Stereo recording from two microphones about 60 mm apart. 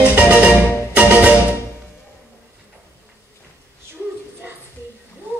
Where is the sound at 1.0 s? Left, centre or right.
Right.